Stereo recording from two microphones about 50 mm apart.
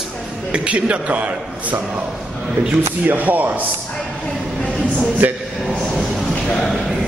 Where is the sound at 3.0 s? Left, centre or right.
Right.